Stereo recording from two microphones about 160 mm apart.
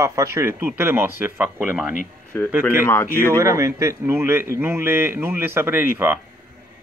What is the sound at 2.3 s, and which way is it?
Speech, 15° left (ahead or behind).